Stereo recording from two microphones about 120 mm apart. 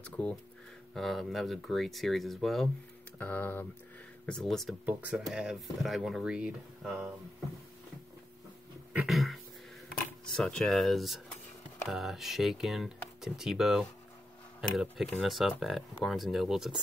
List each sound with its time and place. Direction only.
0.0 s speech: 10° left (ahead or behind)
3.2 s speech: 15° left (ahead or behind)
4.3 s speech: 5° left (ahead or behind)
9.0 s speech: centre (ahead or behind)